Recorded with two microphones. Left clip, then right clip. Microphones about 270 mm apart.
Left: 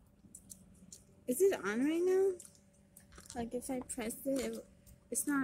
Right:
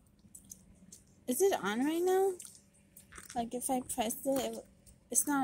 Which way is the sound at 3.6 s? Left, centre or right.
Right.